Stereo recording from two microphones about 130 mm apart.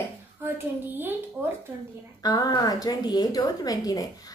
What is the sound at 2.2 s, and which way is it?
A woman's voice, 30° left (ahead or behind).